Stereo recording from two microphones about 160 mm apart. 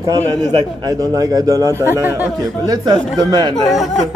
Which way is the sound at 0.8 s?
25° right (ahead or behind).